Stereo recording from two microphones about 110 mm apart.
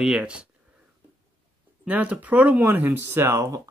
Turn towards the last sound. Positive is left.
turn(degrees=-30)  # may be behind; listen again after turning